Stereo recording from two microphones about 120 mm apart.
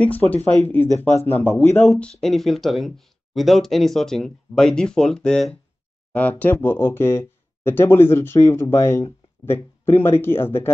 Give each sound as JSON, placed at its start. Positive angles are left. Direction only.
{"t": 0.3, "sound": "speech", "side_deg": 15}